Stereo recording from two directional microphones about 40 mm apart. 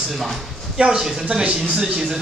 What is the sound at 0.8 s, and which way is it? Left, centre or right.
Speech, centre.